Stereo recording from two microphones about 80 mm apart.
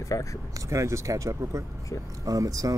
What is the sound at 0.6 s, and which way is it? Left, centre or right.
Speech, right.